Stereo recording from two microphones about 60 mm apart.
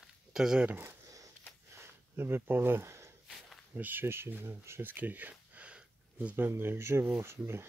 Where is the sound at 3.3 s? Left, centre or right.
Centre.